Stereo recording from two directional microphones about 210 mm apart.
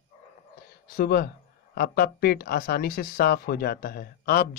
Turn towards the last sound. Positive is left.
turn(degrees=45)  # may be behind; listen again after turning